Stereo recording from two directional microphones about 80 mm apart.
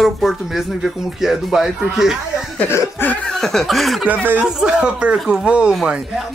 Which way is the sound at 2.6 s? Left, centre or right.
Left.